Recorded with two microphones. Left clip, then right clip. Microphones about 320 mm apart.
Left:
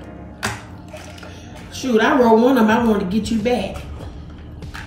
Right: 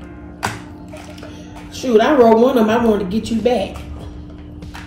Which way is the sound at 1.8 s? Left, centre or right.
Centre.